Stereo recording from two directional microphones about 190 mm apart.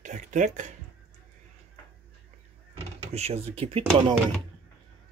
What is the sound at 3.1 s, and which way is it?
Speech, 35° right (ahead or behind).